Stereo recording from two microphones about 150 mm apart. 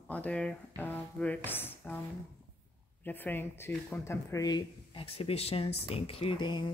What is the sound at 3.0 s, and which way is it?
Speech, 10° left (ahead or behind).